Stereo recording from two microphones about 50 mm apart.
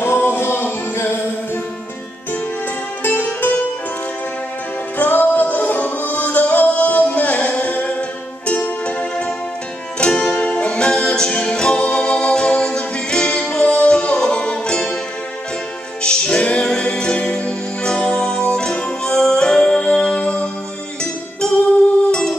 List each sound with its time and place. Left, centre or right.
0.2 s music: left
3.0 s music: left
4.9 s music: left; by 15.0 s centre
16.0 s music: centre